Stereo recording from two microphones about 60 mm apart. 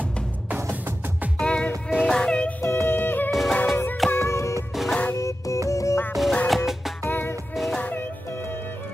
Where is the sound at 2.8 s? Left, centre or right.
Left.